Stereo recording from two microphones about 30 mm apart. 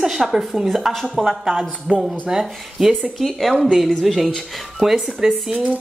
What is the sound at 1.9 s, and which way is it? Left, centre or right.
Speech, right.